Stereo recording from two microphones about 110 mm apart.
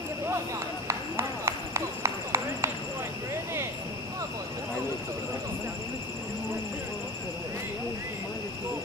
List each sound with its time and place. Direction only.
0.8 s clip-clop: 30° right (ahead or behind)